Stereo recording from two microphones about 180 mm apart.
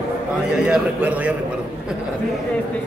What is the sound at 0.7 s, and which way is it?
Speech, 5° right (ahead or behind).